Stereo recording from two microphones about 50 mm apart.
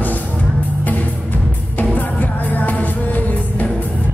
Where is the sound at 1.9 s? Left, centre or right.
Left.